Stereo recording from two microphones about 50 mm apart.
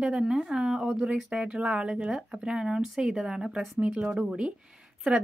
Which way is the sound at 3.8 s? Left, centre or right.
Right.